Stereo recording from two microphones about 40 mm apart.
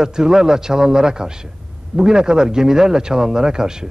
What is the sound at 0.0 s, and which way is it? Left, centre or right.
A man's voice, centre.